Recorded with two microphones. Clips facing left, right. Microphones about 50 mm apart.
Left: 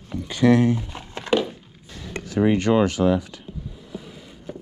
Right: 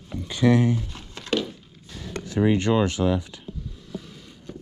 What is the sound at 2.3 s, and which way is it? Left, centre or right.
Speech, left.